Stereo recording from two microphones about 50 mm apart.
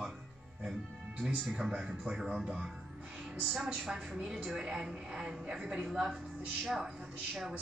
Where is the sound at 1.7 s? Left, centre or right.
Centre.